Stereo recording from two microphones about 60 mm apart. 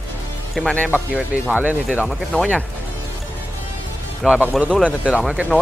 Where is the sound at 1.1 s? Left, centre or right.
Right.